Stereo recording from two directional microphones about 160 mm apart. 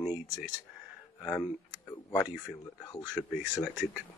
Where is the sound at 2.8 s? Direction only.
25° left (ahead or behind).